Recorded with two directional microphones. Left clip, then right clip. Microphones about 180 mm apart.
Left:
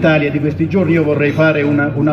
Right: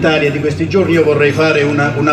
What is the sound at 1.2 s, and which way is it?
Speech, 20° left (ahead or behind).